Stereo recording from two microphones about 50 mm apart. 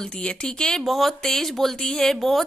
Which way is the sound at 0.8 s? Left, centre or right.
Centre.